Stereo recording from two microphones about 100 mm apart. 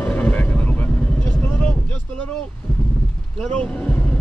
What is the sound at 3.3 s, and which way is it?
Speech, 10° left (ahead or behind).